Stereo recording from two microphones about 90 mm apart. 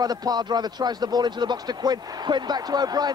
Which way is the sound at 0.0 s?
45° right (ahead or behind).